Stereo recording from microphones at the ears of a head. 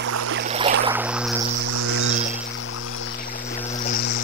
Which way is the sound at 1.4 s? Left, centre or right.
Right.